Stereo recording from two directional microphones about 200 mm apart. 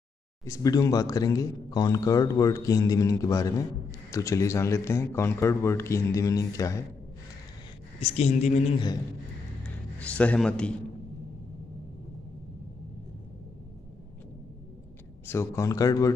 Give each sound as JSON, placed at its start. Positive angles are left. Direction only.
{"t": 0.5, "sound": "speech", "side_deg": 15}
{"t": 8.0, "sound": "speech", "side_deg": 35}
{"t": 9.9, "sound": "a man's voice", "side_deg": 5}
{"t": 15.2, "sound": "speech", "side_deg": 15}